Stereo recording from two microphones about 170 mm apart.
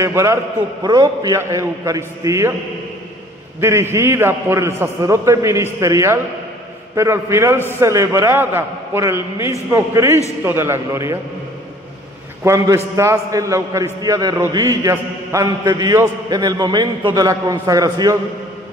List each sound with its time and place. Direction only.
0.0 s a man's voice: 15° right (ahead or behind)
3.6 s a man's voice: 15° right (ahead or behind)
12.4 s a man's voice: 15° right (ahead or behind)